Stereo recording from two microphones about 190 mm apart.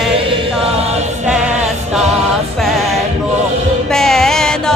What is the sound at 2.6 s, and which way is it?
Music, centre (ahead or behind).